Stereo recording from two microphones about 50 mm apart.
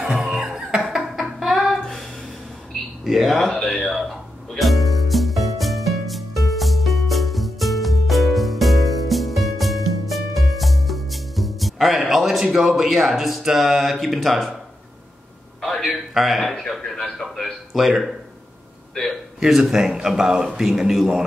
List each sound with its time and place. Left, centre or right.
0.0 s speech: centre
0.5 s music: centre
1.0 s music: centre
2.7 s a sound: centre
3.6 s speech: centre
3.9 s music: centre
15.6 s a sound: centre
16.1 s a man's voice: centre
17.3 s a sound: centre
17.8 s a man's voice: centre
19.4 s a man's voice: centre